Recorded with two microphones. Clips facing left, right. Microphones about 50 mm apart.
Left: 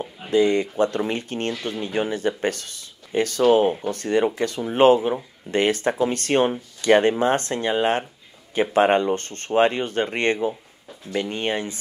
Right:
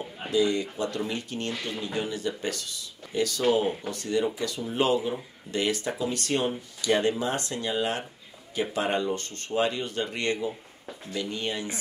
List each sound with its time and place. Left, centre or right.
0.3 s speech: left